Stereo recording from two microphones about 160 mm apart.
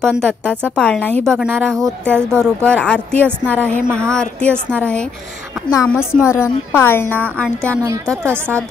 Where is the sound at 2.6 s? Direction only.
5° left (ahead or behind).